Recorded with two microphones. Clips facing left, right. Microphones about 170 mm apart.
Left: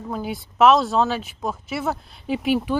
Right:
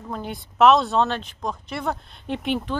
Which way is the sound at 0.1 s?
5° left (ahead or behind).